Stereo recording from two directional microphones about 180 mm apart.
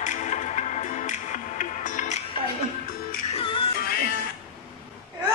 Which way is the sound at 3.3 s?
30° left (ahead or behind).